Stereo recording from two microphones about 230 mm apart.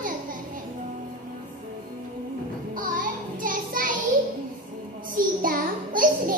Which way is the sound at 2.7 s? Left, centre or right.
Right.